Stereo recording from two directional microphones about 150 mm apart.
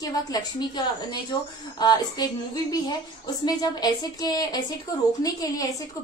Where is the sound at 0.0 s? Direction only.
25° left (ahead or behind).